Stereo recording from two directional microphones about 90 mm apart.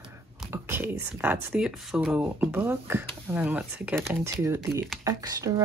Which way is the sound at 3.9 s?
30° right (ahead or behind).